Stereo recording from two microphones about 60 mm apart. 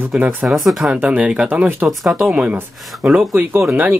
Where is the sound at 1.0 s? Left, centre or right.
Right.